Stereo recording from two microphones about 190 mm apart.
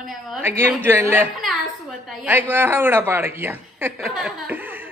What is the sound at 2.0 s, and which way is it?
A woman's voice, 10° right (ahead or behind).